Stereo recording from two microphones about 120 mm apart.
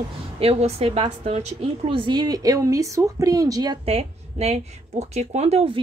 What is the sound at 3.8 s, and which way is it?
A woman's voice, 55° right (ahead or behind).